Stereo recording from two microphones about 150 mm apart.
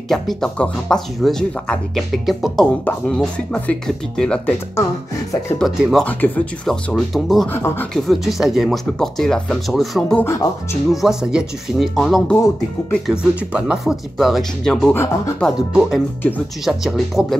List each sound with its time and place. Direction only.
0.1 s speech: 5° left (ahead or behind)
5.6 s speech: centre (ahead or behind)
6.0 s speech: 10° left (ahead or behind)
10.2 s speech: 15° left (ahead or behind)
10.9 s speech: 5° right (ahead or behind)